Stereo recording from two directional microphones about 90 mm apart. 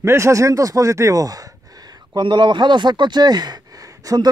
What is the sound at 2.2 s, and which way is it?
Speech, 60° right (ahead or behind).